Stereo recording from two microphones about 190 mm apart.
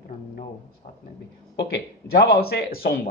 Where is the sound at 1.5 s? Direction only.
60° left (ahead or behind).